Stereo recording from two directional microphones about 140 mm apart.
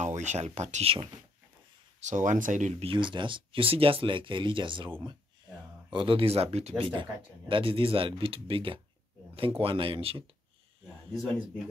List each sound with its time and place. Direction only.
0.0 s speech: 55° right (ahead or behind)
2.0 s speech: 60° right (ahead or behind)
2.8 s speech: 40° right (ahead or behind)
6.8 s speech: 35° right (ahead or behind)